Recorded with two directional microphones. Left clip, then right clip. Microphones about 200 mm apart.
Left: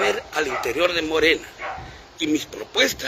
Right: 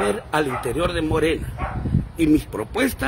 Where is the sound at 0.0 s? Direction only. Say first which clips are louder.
Right 1 dB; 20° right (ahead or behind).